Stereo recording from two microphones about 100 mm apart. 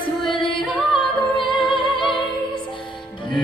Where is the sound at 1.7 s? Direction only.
55° left (ahead or behind).